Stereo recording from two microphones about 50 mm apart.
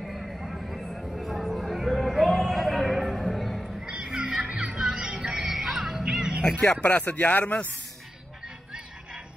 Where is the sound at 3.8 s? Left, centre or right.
Centre.